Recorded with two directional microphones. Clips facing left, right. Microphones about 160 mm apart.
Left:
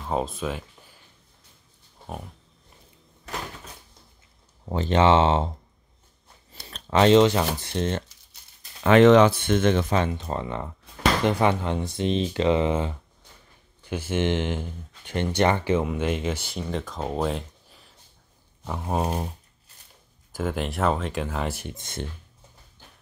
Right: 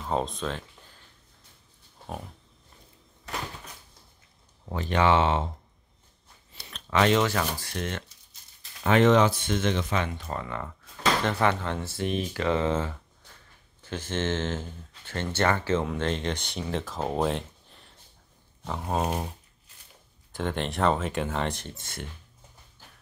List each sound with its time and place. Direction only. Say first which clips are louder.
0.1 s speech: left 2 dB; 5° left (ahead or behind)
4.6 s speech: left 4 dB; 25° left (ahead or behind)
6.5 s speech: left 4 dB; 40° left (ahead or behind)
8.8 s speech: left 5 dB; 90° left; by 9.9 s 50° left (ahead or behind)
9.9 s speech: left 5 dB; 25° left (ahead or behind); by 19.1 s 10° left (ahead or behind)
20.3 s speech: left 2 dB; 5° left (ahead or behind); by 22.0 s 20° left (ahead or behind)